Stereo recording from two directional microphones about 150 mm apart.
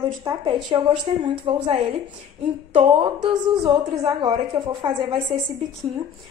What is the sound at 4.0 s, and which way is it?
Speech, 25° right (ahead or behind).